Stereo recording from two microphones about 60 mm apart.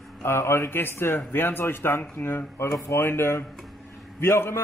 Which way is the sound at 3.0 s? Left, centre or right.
Left.